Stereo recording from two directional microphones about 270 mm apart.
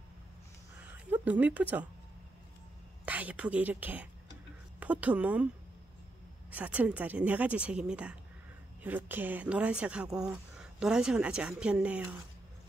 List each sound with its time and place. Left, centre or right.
0.7 s a sound: centre
3.1 s speech: centre
6.5 s speech: centre